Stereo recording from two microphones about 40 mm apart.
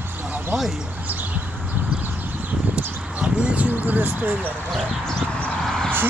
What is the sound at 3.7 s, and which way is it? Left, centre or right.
Speech, right.